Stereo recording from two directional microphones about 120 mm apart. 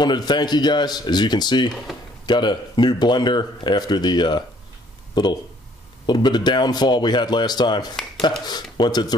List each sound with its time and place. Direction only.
0.0 s speech: 35° left (ahead or behind)